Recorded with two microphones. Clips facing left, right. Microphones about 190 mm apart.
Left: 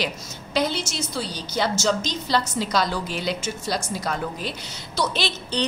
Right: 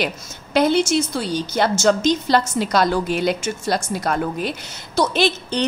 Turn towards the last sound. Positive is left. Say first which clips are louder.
# right 7 dB
turn(degrees=-50)  # may be behind; listen again after turning